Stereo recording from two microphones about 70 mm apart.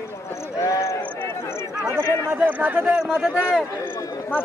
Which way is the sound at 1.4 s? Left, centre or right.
Left.